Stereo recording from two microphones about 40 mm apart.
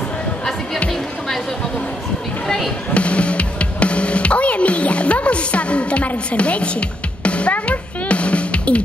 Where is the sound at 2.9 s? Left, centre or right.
Left.